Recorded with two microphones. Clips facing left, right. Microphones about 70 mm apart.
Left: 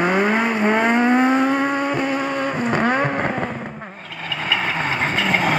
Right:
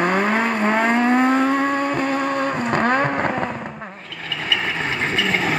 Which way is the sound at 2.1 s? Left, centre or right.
Right.